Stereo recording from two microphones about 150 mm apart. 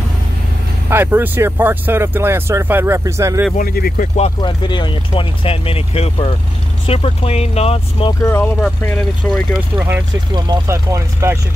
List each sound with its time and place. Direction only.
0.8 s speech: 15° right (ahead or behind)
3.5 s speech: 80° left
4.4 s speech: 30° left (ahead or behind)
8.2 s speech: 15° left (ahead or behind)
9.8 s speech: 15° right (ahead or behind)